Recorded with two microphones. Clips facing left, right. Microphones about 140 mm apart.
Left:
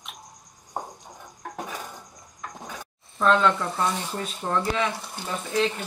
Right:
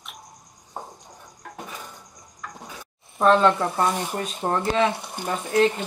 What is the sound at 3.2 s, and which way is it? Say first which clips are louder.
Speech: right 3 dB; 35° right (ahead or behind).